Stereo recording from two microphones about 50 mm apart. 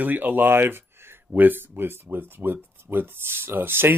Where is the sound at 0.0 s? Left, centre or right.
Right.